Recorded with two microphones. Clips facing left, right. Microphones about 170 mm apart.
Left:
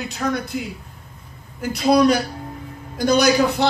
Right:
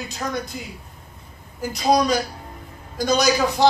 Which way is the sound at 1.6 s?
60° left (ahead or behind).